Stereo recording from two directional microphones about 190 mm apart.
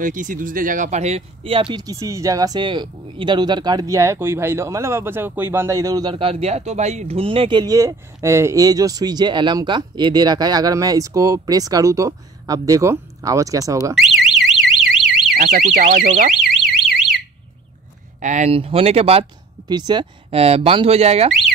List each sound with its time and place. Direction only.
0.0 s speech: 45° right (ahead or behind); by 13.9 s 15° right (ahead or behind)
13.9 s alarm: centre (ahead or behind)
15.3 s speech: 45° right (ahead or behind)
16.6 s a sound: centre (ahead or behind)
18.2 s speech: 40° right (ahead or behind)